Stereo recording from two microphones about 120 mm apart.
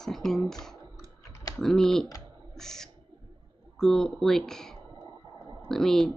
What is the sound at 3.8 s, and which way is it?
Speech, 5° left (ahead or behind).